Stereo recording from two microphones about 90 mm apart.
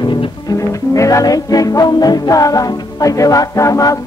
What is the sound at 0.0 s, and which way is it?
Music, 60° left (ahead or behind).